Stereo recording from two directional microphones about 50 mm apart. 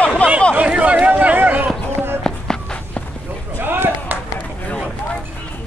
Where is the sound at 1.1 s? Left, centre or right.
Right.